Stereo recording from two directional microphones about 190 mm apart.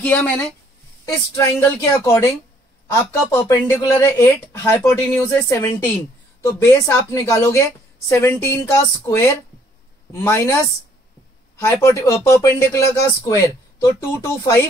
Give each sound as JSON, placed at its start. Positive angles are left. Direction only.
{"t": 0.0, "sound": "speech", "side_deg": 10}
{"t": 10.2, "sound": "speech", "side_deg": 15}
{"t": 11.5, "sound": "speech", "side_deg": 15}